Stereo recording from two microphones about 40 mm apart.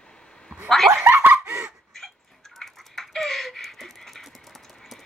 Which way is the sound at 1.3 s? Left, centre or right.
Right.